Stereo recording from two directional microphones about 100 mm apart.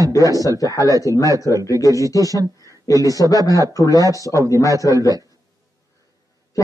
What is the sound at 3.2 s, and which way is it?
Speech, 45° left (ahead or behind).